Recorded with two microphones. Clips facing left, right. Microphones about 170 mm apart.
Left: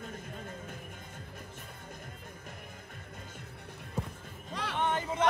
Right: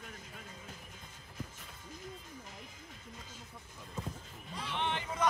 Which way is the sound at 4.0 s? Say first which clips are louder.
Left 4 dB; 35° left (ahead or behind).